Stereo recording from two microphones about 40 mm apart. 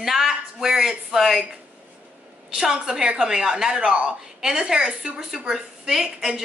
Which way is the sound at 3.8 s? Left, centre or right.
Right.